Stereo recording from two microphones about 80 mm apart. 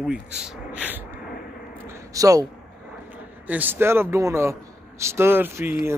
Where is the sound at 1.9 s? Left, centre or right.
Right.